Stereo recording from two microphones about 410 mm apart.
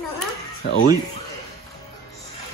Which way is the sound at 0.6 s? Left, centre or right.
Left.